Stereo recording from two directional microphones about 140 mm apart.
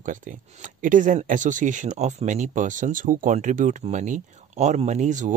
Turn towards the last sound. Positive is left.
turn(degrees=-60)  # may be behind; listen again after turning